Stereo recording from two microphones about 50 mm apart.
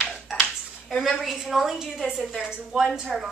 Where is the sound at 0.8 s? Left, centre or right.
Centre.